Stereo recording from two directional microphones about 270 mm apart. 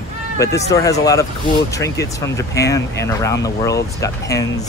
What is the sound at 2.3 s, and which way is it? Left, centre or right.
Speech, centre.